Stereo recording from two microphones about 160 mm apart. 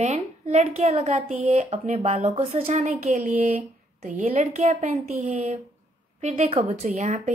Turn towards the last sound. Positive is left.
turn(degrees=-45)  # may be behind; listen again after turning